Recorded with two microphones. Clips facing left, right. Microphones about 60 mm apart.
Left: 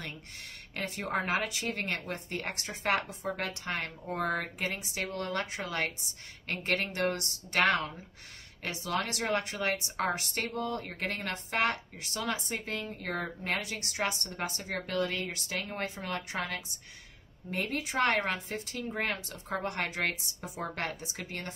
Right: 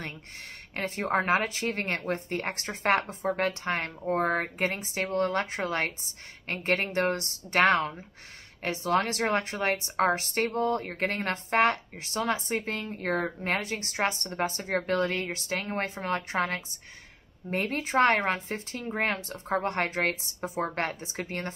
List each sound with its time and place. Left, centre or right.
0.7 s a woman's voice: right